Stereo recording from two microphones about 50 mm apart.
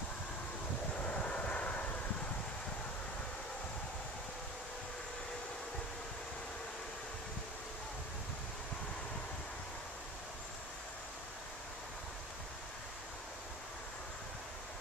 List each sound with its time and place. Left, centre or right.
1.0 s vehicle: left